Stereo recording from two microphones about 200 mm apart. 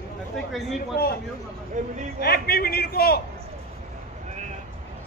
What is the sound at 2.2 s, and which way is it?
A man's voice, 50° left (ahead or behind).